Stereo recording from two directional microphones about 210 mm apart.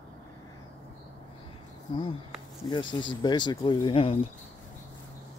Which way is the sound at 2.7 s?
20° left (ahead or behind).